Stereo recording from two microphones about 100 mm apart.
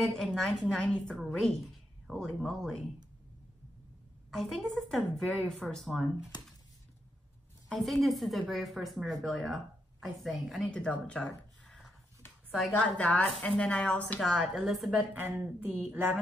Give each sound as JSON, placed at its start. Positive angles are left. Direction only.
{"t": 0.0, "sound": "a woman's voice", "side_deg": 0}
{"t": 4.3, "sound": "a woman's voice", "side_deg": 0}
{"t": 7.7, "sound": "a woman's voice", "side_deg": 0}
{"t": 14.2, "sound": "a woman's voice", "side_deg": 0}
{"t": 15.4, "sound": "speech", "side_deg": -20}